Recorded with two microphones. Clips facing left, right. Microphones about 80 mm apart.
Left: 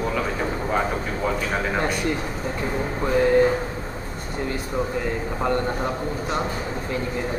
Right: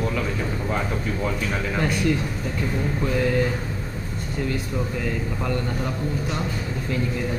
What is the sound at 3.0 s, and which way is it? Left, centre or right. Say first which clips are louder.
Speech: left 6 dB; left.